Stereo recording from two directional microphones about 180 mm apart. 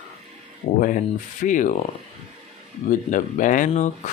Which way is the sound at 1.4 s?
45° left (ahead or behind).